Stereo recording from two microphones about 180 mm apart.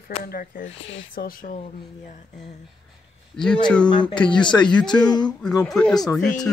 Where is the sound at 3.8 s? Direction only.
25° left (ahead or behind).